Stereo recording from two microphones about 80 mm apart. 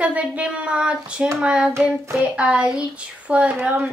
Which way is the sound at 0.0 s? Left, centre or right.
Centre.